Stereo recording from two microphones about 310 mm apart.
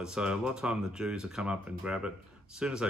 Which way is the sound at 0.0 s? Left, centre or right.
Centre.